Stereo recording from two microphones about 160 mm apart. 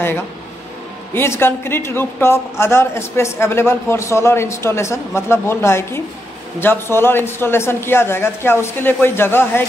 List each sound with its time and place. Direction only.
1.1 s a man's voice: 15° left (ahead or behind)